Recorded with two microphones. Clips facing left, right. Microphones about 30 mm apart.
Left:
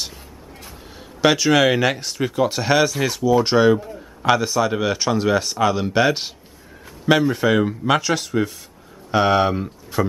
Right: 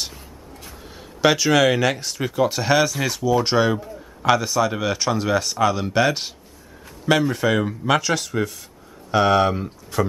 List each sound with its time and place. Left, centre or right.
0.7 s speech: centre